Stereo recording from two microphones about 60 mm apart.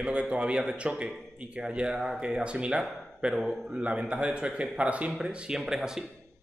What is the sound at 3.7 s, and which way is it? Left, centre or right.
A man's voice, centre.